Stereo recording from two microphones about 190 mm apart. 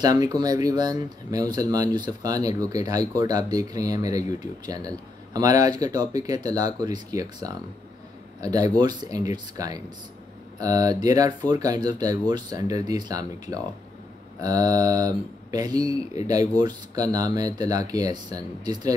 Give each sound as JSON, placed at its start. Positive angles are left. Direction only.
{"t": 0.0, "sound": "speech", "side_deg": -20}